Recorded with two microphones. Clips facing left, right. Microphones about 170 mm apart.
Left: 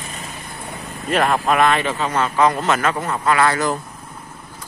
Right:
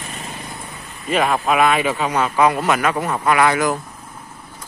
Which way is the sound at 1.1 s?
5° right (ahead or behind).